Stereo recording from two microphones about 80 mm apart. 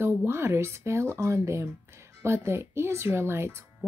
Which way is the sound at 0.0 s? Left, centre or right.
Right.